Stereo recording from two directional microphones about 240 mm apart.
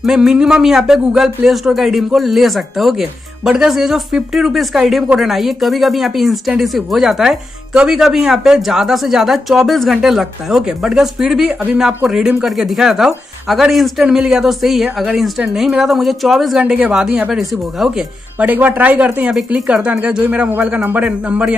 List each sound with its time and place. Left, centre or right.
0.0 s speech: centre